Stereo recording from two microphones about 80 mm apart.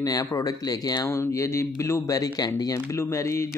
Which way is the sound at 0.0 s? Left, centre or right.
Left.